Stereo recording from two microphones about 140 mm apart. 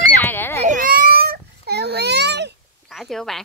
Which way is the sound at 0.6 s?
75° right (ahead or behind).